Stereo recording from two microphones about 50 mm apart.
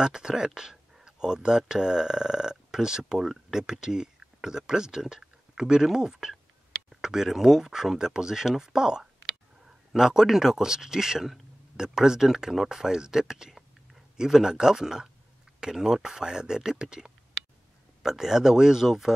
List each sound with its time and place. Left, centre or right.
0.0 s speech: centre